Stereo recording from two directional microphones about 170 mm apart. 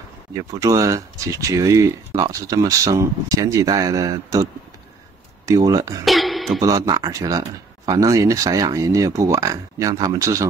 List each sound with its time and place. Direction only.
0.3 s speech: 20° right (ahead or behind)
6.0 s a sound: centre (ahead or behind)
6.6 s speech: 20° right (ahead or behind)